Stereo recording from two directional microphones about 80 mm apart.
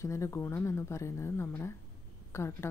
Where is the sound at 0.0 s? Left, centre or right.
Left.